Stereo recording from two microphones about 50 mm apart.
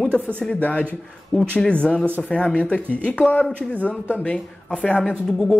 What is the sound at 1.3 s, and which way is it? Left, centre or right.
Speech, centre.